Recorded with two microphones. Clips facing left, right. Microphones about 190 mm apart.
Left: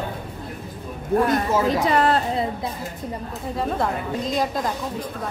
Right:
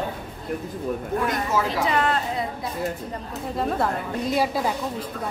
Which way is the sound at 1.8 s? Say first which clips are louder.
Left 3 dB; 40° left (ahead or behind).